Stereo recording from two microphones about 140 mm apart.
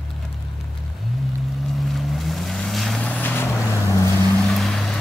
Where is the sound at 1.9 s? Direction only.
Centre (ahead or behind).